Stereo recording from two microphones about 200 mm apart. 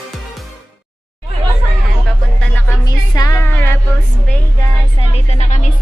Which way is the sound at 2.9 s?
20° left (ahead or behind).